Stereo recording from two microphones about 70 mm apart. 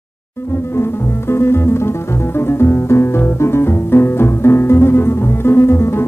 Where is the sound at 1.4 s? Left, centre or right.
Left.